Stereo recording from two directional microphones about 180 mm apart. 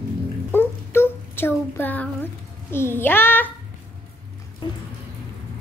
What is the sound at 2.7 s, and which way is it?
Speech, 10° left (ahead or behind).